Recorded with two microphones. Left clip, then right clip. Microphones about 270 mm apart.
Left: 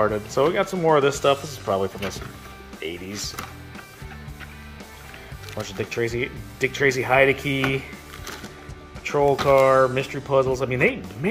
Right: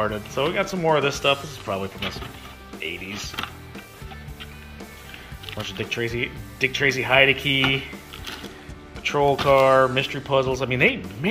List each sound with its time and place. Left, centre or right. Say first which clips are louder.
0.0 s speech: left 4 dB; left
5.6 s speech: left 1 dB; centre
9.0 s speech: even; centre